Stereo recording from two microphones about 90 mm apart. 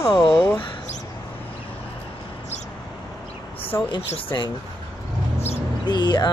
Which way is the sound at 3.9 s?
60° left (ahead or behind).